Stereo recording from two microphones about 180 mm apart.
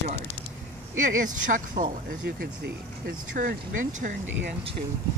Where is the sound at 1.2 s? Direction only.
50° right (ahead or behind).